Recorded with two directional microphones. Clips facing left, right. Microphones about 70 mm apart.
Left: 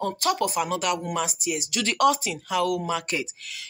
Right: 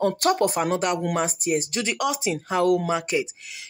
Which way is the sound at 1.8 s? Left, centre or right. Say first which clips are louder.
Left 5 dB; centre.